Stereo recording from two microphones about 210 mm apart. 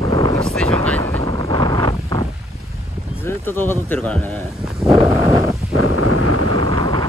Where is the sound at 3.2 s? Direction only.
10° left (ahead or behind).